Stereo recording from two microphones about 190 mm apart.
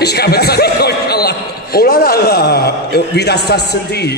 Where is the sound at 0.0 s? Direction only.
60° left (ahead or behind).